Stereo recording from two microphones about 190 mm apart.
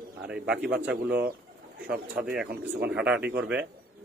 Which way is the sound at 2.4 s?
60° right (ahead or behind).